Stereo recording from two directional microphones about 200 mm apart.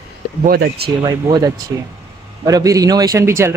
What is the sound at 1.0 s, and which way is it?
A man's voice, 20° right (ahead or behind).